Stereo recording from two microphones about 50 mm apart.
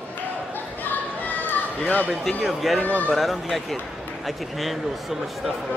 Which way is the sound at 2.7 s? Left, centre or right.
Left.